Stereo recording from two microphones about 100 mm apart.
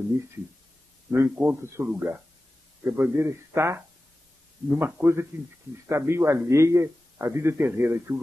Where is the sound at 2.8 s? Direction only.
20° right (ahead or behind).